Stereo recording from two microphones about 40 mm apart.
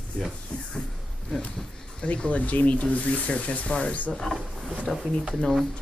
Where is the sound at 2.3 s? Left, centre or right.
Left.